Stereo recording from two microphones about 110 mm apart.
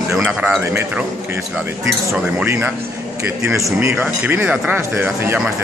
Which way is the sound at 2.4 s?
20° right (ahead or behind).